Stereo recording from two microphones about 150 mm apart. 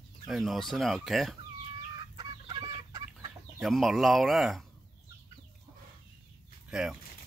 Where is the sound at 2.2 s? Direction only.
30° right (ahead or behind).